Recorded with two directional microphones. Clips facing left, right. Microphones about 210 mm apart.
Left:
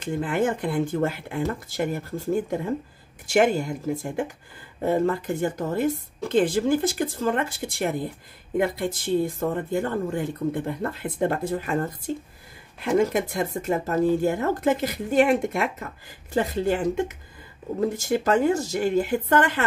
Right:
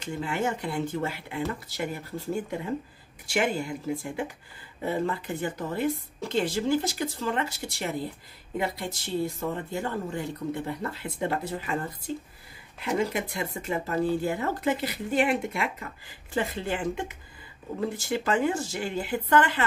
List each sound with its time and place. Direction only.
0.0 s speech: 50° left (ahead or behind)